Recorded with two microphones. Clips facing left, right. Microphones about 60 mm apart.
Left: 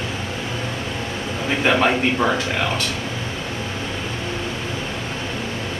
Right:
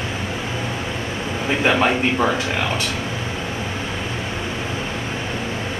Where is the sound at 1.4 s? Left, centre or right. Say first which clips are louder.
Even; centre.